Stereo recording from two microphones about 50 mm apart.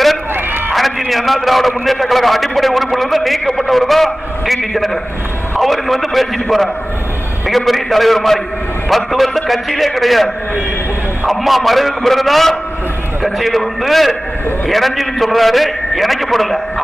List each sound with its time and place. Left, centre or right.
0.3 s a sound: right
0.7 s a man's voice: centre
5.6 s a man's voice: centre